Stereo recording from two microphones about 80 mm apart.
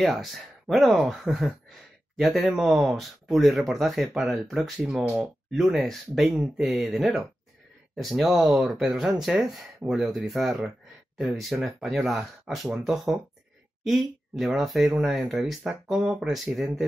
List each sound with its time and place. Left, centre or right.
0.0 s speech: centre